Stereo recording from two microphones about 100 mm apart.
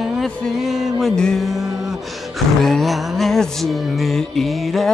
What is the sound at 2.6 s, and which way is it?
Music, centre (ahead or behind).